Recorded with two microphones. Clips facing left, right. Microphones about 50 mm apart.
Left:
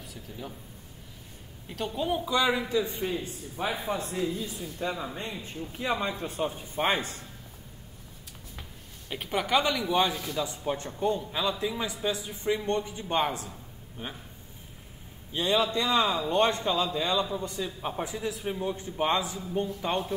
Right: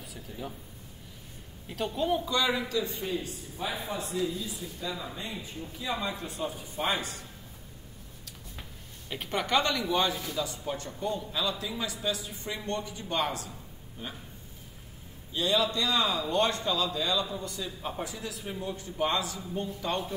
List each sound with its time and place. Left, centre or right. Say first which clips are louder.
0.0 s speech: right 1 dB; centre
1.7 s a man's voice: right 1 dB; centre; by 4.0 s left
4.0 s speech: left 1 dB; left
9.1 s a man's voice: left 1 dB; centre
10.4 s a man's voice: left 3 dB; left
15.3 s a man's voice: left 2 dB; left